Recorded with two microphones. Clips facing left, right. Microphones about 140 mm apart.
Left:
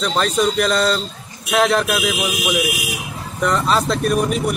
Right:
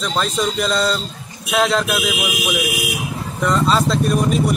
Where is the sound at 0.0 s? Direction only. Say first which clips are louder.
Left 3 dB; centre (ahead or behind).